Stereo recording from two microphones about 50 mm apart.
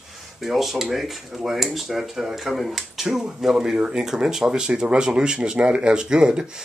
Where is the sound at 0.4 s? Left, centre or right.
Centre.